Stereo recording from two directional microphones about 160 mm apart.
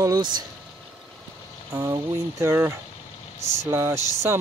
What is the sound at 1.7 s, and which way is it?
Speech, 20° right (ahead or behind).